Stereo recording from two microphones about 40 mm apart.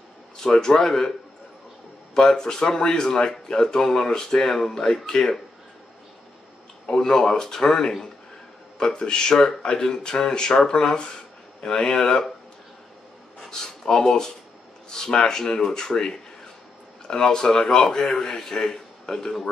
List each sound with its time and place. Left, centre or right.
0.4 s speech: centre
2.1 s speech: centre
6.9 s speech: centre
9.3 s speech: centre
9.6 s speech: left
13.5 s speech: centre